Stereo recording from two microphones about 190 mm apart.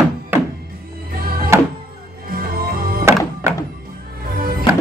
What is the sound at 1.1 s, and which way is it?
Music, 50° right (ahead or behind).